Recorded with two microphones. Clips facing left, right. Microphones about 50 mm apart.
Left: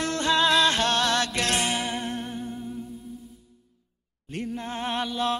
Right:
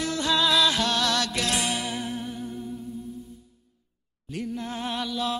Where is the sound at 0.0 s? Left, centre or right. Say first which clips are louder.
Left 2 dB; left.